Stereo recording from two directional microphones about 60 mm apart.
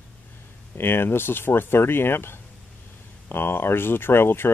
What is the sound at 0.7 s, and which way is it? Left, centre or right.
Speech, left.